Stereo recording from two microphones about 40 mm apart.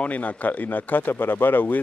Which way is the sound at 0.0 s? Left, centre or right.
Left.